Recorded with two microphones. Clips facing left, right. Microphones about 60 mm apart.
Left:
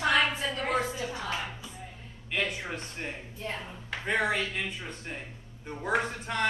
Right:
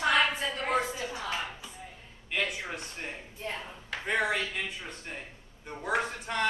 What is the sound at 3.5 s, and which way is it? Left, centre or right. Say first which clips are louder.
Speech: left 1 dB; centre.